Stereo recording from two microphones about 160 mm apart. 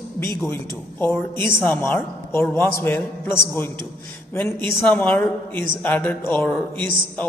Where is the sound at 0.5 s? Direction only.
15° left (ahead or behind).